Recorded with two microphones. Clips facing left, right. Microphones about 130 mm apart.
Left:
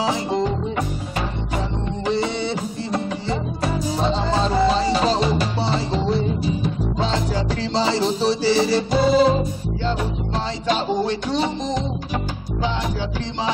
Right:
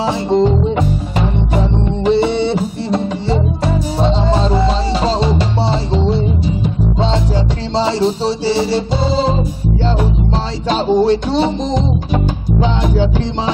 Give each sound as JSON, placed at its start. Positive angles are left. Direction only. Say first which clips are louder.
{"t": 0.0, "sound": "music", "louder": "right 7 dB", "side_deg": -25}
{"t": 2.0, "sound": "music", "louder": "right 9 dB", "side_deg": -25}
{"t": 7.7, "sound": "music", "louder": "right 6 dB", "side_deg": -30}
{"t": 10.7, "sound": "music", "louder": "right 9 dB", "side_deg": -25}